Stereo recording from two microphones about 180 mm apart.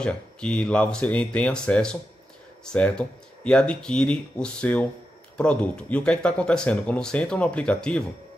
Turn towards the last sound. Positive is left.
turn(degrees=5)  # may be behind; listen again after turning